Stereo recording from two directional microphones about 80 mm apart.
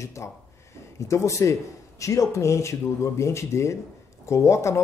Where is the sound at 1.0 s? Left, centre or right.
Left.